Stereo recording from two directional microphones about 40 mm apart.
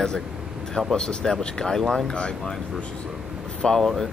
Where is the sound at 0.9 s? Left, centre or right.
Centre.